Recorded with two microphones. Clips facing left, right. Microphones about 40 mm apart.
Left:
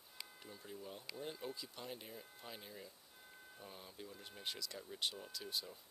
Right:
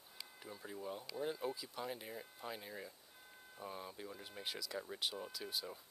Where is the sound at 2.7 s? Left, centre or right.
Right.